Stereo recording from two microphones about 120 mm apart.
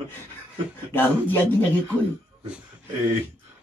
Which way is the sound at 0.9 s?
15° left (ahead or behind).